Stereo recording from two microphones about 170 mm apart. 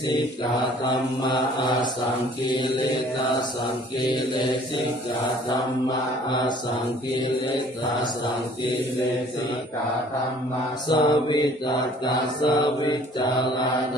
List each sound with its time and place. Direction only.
1.2 s mantra: 25° left (ahead or behind)
4.0 s mantra: 30° left (ahead or behind)
10.9 s mantra: 25° left (ahead or behind)